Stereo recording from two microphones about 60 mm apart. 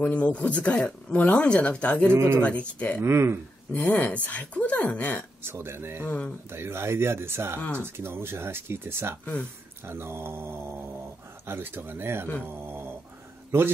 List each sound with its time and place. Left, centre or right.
0.0 s speech: left
2.1 s speech: right
2.4 s speech: centre
3.0 s speech: right
3.7 s speech: left
5.4 s speech: right
6.0 s speech: left
6.5 s speech: right
12.4 s a sound: right